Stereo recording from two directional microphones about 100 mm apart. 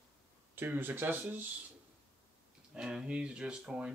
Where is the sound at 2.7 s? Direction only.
10° right (ahead or behind).